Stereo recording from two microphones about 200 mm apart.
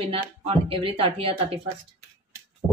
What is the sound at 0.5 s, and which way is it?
A woman's voice, 25° right (ahead or behind).